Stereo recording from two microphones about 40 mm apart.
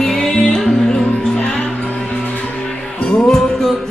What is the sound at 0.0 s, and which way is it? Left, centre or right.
Music, centre.